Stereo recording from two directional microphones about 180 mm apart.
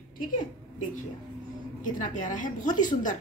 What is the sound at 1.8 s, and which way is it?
Speech, 45° left (ahead or behind).